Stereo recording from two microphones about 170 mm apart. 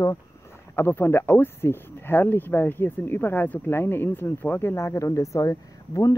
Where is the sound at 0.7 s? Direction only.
15° left (ahead or behind).